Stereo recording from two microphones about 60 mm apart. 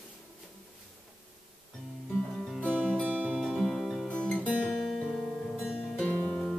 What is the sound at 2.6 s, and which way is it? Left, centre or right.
Music, right.